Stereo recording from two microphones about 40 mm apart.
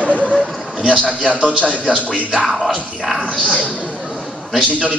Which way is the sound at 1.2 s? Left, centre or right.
Right.